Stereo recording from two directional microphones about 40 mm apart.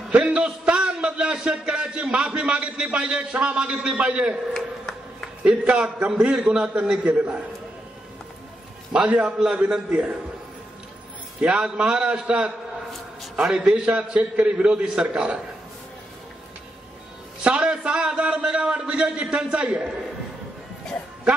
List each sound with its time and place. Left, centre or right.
0.1 s a man's voice: right
4.6 s a sound: centre
5.4 s a man's voice: right
8.9 s a man's voice: right
9.2 s a man's voice: right
9.6 s a man's voice: right
11.7 s a man's voice: right
13.4 s a man's voice: centre
13.8 s a man's voice: right
14.5 s a man's voice: right
17.4 s a man's voice: right